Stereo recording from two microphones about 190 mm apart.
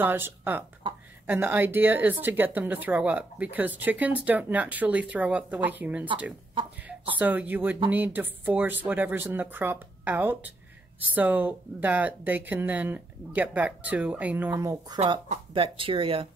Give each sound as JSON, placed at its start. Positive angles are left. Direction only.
{"t": 0.0, "sound": "speech", "side_deg": -10}
{"t": 15.5, "sound": "speech", "side_deg": -30}